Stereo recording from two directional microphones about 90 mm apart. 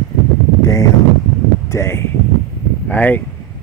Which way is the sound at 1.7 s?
30° left (ahead or behind).